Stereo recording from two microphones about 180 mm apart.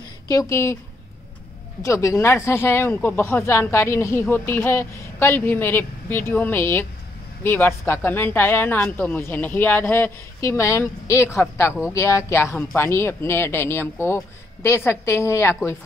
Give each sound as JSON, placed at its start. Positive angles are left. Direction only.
{"t": 0.3, "sound": "speech", "side_deg": 15}
{"t": 1.8, "sound": "speech", "side_deg": 15}